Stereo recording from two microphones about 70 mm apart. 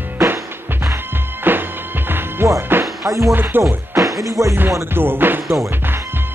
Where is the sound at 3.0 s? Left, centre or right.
Right.